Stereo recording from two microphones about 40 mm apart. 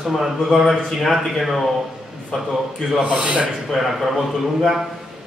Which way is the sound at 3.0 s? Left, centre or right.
Right.